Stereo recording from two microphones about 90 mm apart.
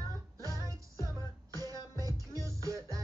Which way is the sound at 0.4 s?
40° right (ahead or behind).